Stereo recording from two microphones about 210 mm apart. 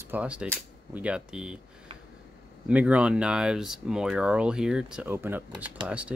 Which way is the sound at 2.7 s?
5° right (ahead or behind).